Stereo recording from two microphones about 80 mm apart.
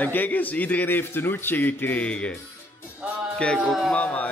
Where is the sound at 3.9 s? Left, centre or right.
Centre.